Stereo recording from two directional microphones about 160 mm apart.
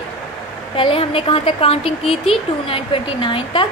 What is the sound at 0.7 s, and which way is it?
A woman's voice, 35° left (ahead or behind).